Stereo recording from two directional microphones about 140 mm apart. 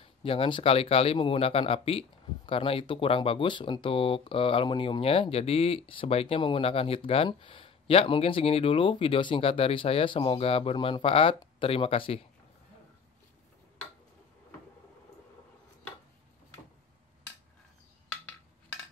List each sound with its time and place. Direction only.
0.0 s speech: 40° left (ahead or behind)